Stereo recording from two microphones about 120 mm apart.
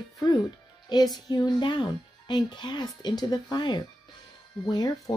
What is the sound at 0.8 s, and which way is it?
Speech, 35° left (ahead or behind).